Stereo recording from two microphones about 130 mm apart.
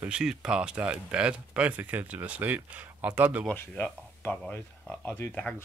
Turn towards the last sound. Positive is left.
turn(degrees=10)  # may be behind; listen again after turning